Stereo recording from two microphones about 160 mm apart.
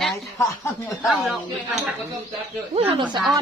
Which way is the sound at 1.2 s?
Centre (ahead or behind).